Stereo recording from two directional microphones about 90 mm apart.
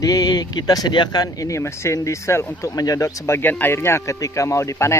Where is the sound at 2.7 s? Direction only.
45° left (ahead or behind).